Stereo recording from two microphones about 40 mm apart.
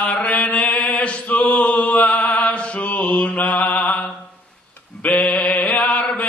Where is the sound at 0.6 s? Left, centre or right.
Left.